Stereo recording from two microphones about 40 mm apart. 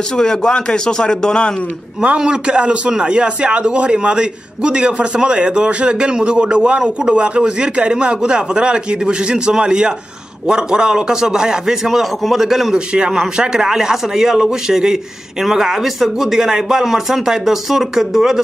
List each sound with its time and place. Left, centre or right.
0.1 s a man's voice: centre
2.1 s a man's voice: centre
12.7 s speech: right